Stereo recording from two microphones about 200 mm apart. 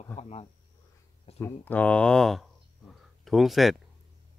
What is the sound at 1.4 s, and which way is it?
A man's voice, 10° left (ahead or behind).